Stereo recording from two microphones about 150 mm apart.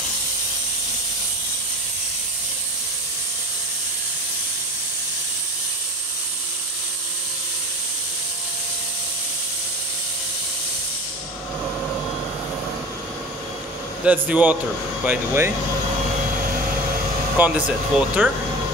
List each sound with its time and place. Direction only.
14.0 s speech: 10° right (ahead or behind)
17.4 s speech: 10° right (ahead or behind)